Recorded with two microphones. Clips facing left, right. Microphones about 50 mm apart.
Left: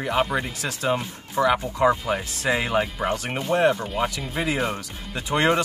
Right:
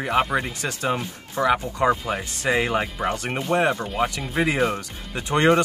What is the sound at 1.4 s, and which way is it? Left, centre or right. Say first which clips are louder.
Speech: left 1 dB; right.